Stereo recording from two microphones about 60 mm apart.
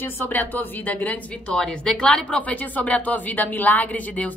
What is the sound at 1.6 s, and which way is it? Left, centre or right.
Speech, centre.